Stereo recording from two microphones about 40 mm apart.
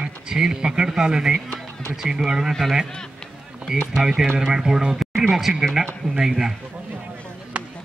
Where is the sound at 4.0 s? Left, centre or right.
Centre.